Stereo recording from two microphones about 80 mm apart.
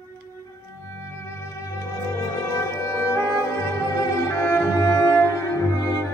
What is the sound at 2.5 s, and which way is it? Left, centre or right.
Music, left.